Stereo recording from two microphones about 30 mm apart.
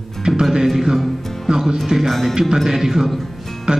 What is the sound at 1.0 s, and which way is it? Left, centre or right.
Music, centre.